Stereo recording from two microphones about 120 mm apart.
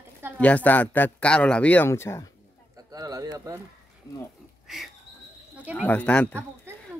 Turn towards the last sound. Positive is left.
turn(degrees=10)  # may be behind; listen again after turning